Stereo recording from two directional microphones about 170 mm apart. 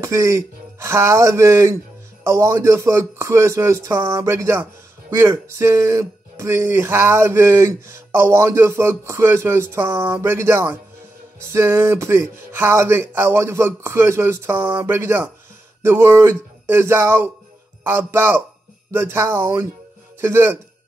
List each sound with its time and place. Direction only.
0.0 s speech: 20° right (ahead or behind)